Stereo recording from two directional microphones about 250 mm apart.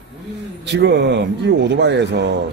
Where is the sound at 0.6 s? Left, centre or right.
Right.